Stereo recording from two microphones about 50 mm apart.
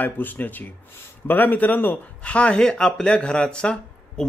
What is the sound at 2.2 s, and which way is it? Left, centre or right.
Speech, left.